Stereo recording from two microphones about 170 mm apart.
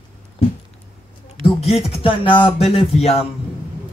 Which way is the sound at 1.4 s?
35° left (ahead or behind).